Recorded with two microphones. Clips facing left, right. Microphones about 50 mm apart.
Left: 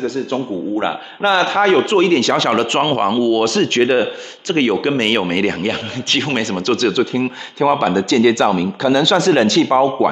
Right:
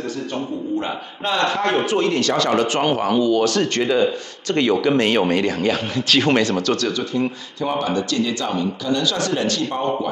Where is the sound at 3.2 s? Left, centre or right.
Left.